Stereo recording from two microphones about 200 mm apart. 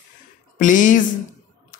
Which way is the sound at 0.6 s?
40° left (ahead or behind).